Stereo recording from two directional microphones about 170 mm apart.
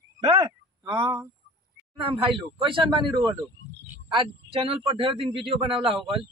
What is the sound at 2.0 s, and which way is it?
A man's voice, 30° right (ahead or behind).